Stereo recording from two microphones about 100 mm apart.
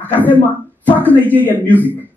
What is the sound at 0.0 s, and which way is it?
A man's voice, 20° left (ahead or behind).